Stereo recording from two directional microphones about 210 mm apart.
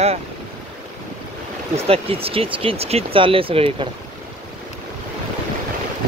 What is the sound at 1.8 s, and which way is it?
Speech, 30° right (ahead or behind).